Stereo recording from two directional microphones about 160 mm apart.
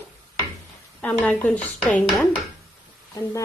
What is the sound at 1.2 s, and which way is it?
Speech, 10° left (ahead or behind).